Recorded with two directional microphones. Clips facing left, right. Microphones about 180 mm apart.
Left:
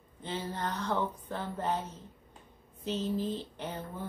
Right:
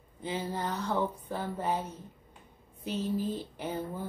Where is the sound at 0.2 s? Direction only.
10° right (ahead or behind).